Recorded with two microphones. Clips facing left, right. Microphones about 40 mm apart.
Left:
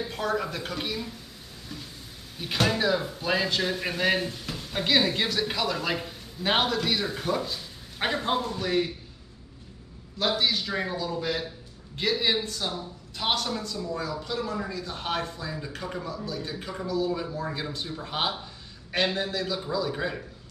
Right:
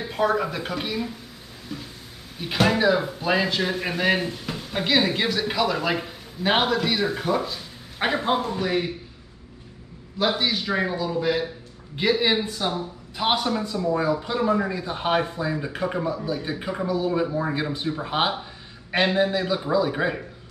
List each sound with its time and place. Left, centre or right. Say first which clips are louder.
0.1 s speech: right 9 dB; centre
1.7 s a sound: right 6 dB; centre
2.3 s speech: right 5 dB; centre
10.1 s a man's voice: right 3 dB; centre